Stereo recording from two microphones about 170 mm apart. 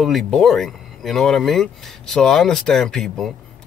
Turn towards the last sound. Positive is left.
turn(degrees=0)  # may be behind; listen again after turning